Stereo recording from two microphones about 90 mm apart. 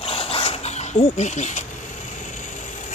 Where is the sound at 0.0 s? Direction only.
90° left.